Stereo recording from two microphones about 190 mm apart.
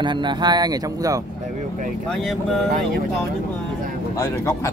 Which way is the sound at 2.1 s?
Centre (ahead or behind).